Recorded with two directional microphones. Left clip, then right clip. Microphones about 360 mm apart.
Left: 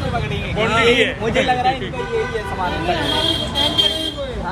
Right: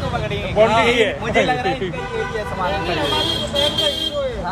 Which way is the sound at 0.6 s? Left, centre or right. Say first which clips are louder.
Right 1 dB; centre.